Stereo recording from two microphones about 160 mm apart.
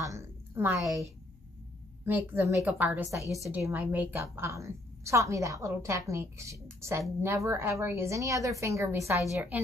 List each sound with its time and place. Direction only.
0.0 s a sound: 20° right (ahead or behind)
0.7 s a woman's voice: centre (ahead or behind)
2.0 s a woman's voice: 10° right (ahead or behind)
3.3 s a woman's voice: 20° left (ahead or behind)
3.5 s a woman's voice: 10° right (ahead or behind)